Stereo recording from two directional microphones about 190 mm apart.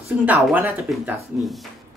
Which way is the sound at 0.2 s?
10° right (ahead or behind).